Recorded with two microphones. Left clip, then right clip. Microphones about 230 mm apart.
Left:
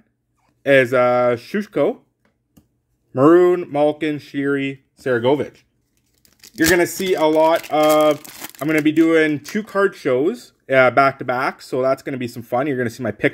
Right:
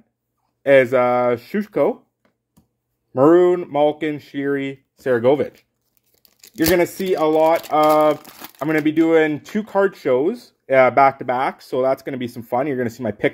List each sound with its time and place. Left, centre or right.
0.6 s speech: centre
3.1 s speech: centre
7.0 s speech: centre
7.8 s speech: right
8.4 s speech: centre